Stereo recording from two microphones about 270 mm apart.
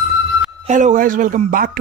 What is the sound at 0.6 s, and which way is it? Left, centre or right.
Speech, right.